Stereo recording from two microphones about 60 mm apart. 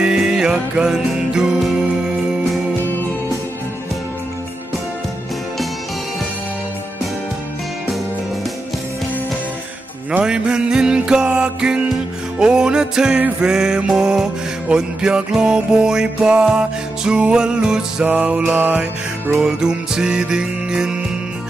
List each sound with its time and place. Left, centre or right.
0.0 s music: centre
2.8 s music: left
10.2 s music: centre
18.0 s music: right
19.4 s music: centre